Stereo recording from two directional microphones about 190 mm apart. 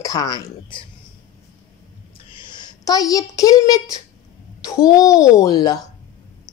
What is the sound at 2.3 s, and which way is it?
A woman's voice, 25° left (ahead or behind).